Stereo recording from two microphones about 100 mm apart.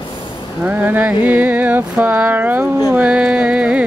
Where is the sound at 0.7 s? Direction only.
15° right (ahead or behind).